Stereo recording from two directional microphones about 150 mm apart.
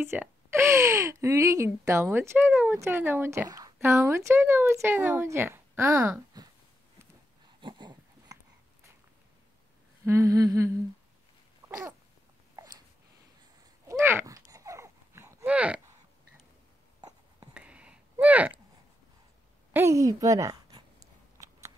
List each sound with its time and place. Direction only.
0.0 s speech: 15° right (ahead or behind)
6.4 s a sound: 25° right (ahead or behind)
7.6 s dog: 30° right (ahead or behind)
10.0 s humming: 20° right (ahead or behind)
12.5 s a sound: 25° right (ahead or behind)
13.8 s dog: 15° right (ahead or behind)
17.6 s a sound: 10° right (ahead or behind)
19.7 s a woman's voice: 20° right (ahead or behind)
21.4 s biting: 20° right (ahead or behind)